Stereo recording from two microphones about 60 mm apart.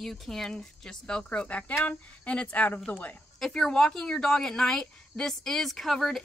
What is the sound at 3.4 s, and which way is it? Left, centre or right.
A woman's voice, centre.